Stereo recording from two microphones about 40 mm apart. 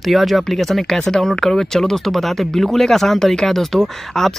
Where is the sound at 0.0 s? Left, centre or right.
Centre.